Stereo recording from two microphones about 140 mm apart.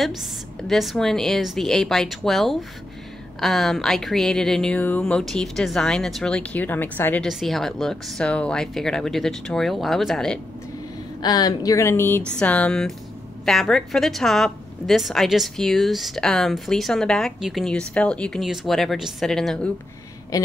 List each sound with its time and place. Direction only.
0.0 s a woman's voice: centre (ahead or behind)
7.2 s a woman's voice: centre (ahead or behind)
11.1 s a woman's voice: 30° left (ahead or behind); by 19.7 s 5° left (ahead or behind)